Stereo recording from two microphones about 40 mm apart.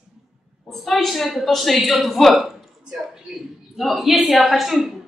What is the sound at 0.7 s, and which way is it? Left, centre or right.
A woman's voice, centre.